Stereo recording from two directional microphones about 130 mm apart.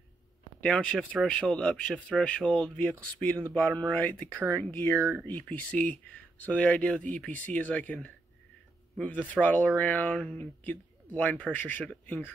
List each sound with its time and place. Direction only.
0.6 s speech: 5° left (ahead or behind)
4.9 s speech: 20° right (ahead or behind)
5.2 s speech: 15° left (ahead or behind)